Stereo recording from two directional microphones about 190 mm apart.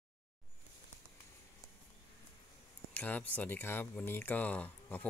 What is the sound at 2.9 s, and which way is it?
Speech, 10° left (ahead or behind).